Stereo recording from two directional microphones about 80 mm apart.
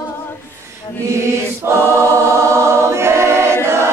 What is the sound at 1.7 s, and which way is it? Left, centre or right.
Choir, right.